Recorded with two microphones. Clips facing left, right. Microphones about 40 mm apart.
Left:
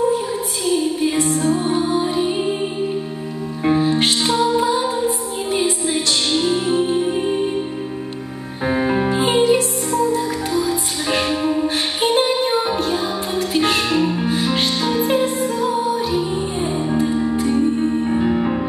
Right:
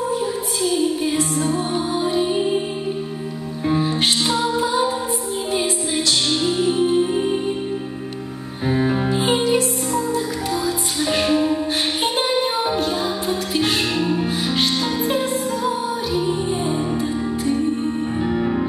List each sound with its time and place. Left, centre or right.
1.8 s music: left
3.6 s music: left
6.5 s music: left
8.6 s music: left
9.1 s music: left
13.9 s music: left
14.2 s music: left